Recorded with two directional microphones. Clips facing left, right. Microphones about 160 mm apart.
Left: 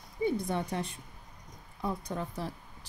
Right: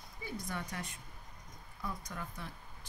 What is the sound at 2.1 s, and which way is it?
Speech, 30° left (ahead or behind).